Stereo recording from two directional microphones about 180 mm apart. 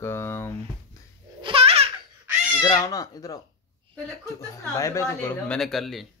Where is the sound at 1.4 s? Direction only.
30° right (ahead or behind).